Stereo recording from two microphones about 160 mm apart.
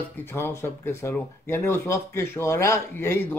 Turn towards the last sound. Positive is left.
turn(degrees=15)  # may be behind; listen again after turning